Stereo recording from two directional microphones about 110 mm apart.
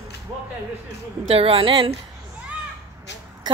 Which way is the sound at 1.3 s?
60° right (ahead or behind).